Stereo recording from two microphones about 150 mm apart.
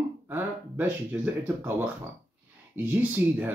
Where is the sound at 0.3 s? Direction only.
10° right (ahead or behind).